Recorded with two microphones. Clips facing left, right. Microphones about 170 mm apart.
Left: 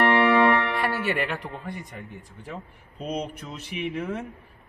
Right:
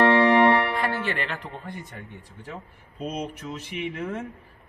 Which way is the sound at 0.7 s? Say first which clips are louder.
Left 1 dB; 10° left (ahead or behind).